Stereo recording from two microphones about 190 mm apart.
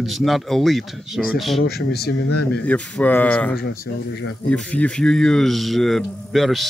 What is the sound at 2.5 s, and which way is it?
Speech, 5° left (ahead or behind).